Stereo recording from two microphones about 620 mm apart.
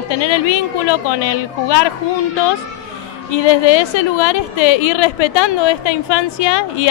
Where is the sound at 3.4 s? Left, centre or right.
Left.